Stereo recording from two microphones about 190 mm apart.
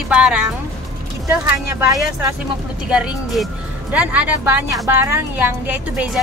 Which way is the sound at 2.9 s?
Centre (ahead or behind).